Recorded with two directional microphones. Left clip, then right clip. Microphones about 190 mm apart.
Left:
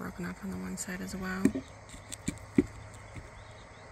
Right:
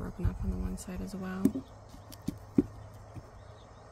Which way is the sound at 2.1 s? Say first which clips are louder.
Left 2 dB; 5° right (ahead or behind).